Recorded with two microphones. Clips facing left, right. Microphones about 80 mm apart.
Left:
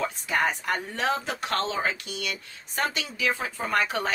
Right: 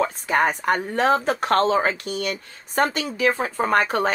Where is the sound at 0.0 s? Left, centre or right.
Right.